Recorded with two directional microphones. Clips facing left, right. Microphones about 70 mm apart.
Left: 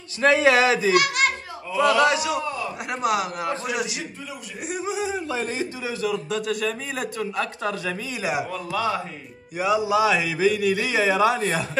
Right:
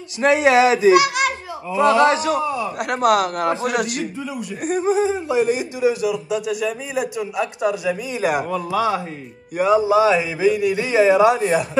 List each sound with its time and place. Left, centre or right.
0.2 s a man's voice: right
0.9 s a child's voice: centre
1.8 s a man's voice: right
2.8 s speech: right
4.6 s a man's voice: right
5.1 s a man's voice: centre
8.2 s speech: right
8.5 s speech: centre
9.6 s a man's voice: right; by 11.6 s centre